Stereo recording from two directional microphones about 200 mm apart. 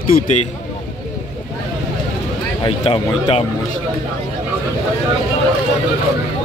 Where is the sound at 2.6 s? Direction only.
25° left (ahead or behind).